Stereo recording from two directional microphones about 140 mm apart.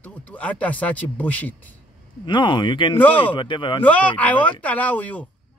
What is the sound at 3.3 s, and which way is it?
Speech, 35° left (ahead or behind).